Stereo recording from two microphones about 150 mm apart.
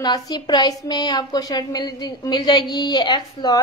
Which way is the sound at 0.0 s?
25° left (ahead or behind).